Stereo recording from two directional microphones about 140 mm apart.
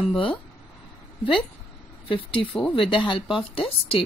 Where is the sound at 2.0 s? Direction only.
35° left (ahead or behind).